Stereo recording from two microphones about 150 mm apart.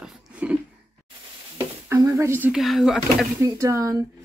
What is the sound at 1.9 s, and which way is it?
Speech, 20° right (ahead or behind).